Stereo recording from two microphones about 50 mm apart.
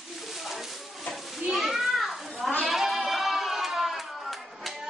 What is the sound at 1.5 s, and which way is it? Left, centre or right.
Children playing, centre.